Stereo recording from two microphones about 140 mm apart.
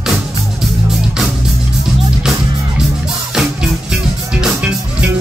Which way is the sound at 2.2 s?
5° right (ahead or behind).